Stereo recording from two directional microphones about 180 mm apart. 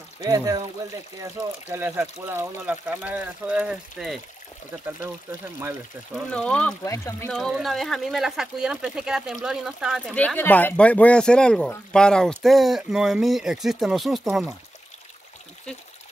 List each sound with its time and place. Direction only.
0.2 s speech: 20° right (ahead or behind)
1.7 s speech: 10° right (ahead or behind)
6.1 s speech: 5° left (ahead or behind)
7.2 s speech: centre (ahead or behind)